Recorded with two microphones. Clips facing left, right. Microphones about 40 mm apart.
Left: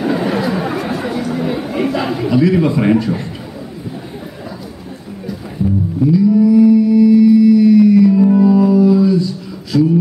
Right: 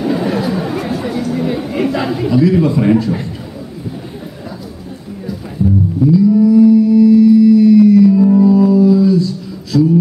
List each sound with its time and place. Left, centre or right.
0.0 s chatter: centre
2.0 s a man's voice: centre
6.1 s music: centre
9.7 s a sound: centre